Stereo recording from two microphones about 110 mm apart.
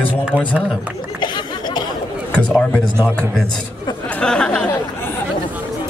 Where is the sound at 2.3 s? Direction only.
5° left (ahead or behind).